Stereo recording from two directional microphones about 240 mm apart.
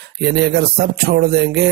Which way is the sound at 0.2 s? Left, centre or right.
Right.